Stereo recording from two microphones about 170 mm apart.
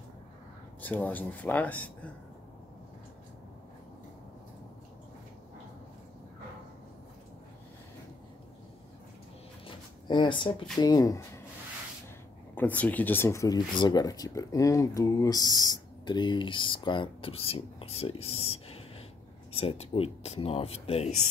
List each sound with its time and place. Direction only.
0.7 s speech: 10° left (ahead or behind)
9.7 s zipper: 25° left (ahead or behind)
10.8 s speech: 20° left (ahead or behind)
12.5 s speech: 10° left (ahead or behind); by 21.1 s 35° left (ahead or behind)